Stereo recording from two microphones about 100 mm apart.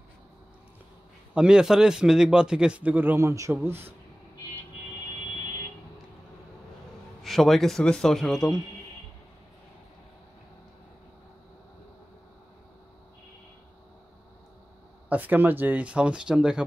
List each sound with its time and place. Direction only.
1.3 s a man's voice: 10° right (ahead or behind)
7.2 s speech: centre (ahead or behind)
15.0 s a man's voice: 15° right (ahead or behind)